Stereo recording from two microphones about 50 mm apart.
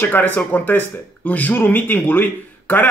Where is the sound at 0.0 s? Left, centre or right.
Left.